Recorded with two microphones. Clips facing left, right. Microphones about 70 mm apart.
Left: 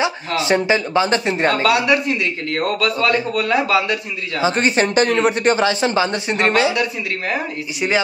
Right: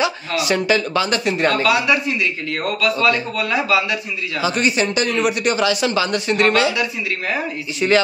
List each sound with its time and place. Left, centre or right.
0.3 s a man's voice: left
1.7 s speech: left
7.8 s speech: centre